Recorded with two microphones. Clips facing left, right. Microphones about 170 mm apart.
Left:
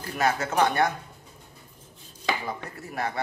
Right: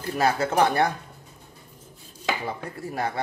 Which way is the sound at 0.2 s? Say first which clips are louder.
Right 2 dB; 30° right (ahead or behind).